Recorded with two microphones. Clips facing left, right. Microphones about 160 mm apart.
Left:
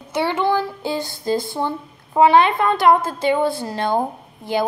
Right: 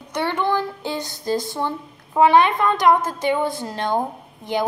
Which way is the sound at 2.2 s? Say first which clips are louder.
Left 1 dB; 10° left (ahead or behind).